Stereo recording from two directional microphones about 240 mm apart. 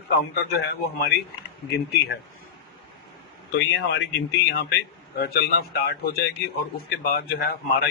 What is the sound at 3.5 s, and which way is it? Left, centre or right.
Speech, left.